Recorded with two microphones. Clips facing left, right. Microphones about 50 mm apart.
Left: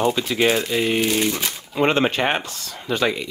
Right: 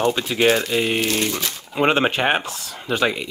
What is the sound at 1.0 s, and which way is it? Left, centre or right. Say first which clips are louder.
Speech: left 1 dB; centre.